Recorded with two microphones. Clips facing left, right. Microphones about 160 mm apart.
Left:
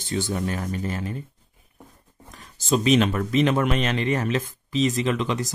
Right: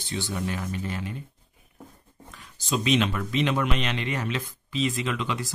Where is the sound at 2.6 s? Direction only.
45° left (ahead or behind).